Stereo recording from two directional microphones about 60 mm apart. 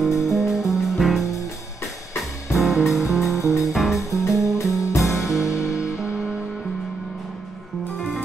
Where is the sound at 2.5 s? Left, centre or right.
Centre.